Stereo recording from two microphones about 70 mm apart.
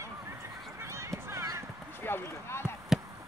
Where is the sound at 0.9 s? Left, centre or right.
Right.